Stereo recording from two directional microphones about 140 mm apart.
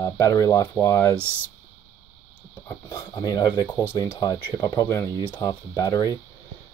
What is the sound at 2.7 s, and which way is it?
Speech, 20° left (ahead or behind).